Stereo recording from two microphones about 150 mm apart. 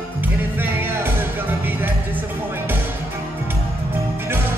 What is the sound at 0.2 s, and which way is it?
Music, 15° right (ahead or behind).